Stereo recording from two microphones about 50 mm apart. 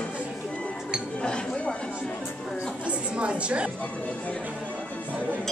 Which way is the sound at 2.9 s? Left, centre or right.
Right.